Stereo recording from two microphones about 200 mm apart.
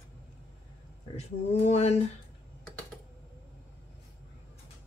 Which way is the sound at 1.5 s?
30° left (ahead or behind).